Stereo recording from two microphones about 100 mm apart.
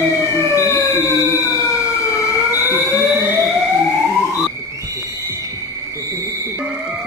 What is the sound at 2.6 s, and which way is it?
Fire alarm, 20° right (ahead or behind).